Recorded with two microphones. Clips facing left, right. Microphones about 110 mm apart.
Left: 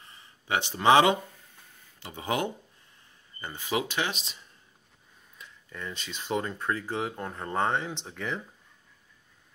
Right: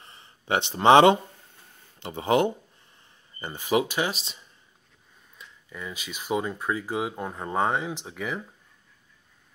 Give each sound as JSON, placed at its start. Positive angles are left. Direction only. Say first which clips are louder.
{"t": 0.0, "sound": "a sound", "louder": "right 3 dB", "side_deg": -30}
{"t": 0.7, "sound": "speech", "louder": "right 5 dB", "side_deg": -30}
{"t": 2.2, "sound": "speech", "louder": "right 7 dB", "side_deg": -30}
{"t": 3.3, "sound": "speech", "louder": "right 6 dB", "side_deg": -15}
{"t": 5.7, "sound": "speech", "louder": "right 1 dB", "side_deg": -5}